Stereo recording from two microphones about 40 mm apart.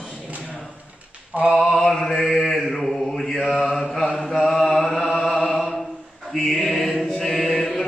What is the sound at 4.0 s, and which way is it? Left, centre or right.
Mantra, centre.